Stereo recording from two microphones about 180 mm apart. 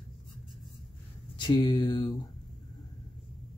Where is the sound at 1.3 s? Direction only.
25° left (ahead or behind).